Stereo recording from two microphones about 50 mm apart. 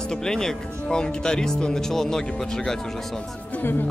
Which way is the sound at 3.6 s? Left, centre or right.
Left.